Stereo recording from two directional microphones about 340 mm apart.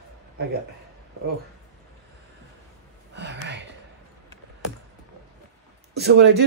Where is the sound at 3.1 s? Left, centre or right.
Right.